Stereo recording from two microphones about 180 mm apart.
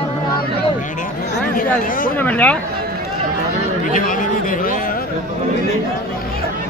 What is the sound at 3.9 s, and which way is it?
Speech, 50° left (ahead or behind).